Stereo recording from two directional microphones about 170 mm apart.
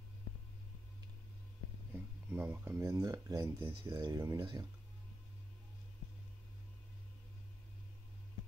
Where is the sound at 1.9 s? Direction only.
10° right (ahead or behind).